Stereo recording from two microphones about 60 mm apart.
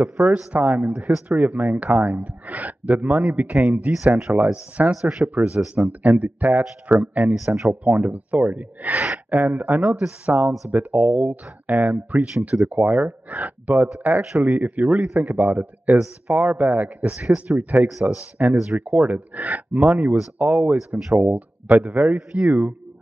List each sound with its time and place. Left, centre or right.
0.0 s speech: right
9.8 s speech: centre
10.2 s speech: right
17.3 s speech: centre
18.0 s speech: right